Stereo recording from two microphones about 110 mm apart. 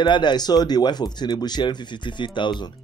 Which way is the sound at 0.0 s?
45° left (ahead or behind).